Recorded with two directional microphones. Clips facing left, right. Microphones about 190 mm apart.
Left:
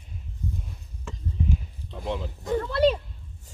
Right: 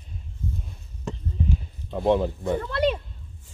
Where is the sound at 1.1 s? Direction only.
40° right (ahead or behind).